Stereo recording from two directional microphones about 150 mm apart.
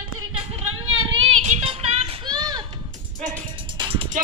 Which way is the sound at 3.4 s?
35° right (ahead or behind).